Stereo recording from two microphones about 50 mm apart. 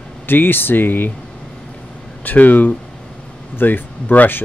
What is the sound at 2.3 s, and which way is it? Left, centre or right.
Speech, left.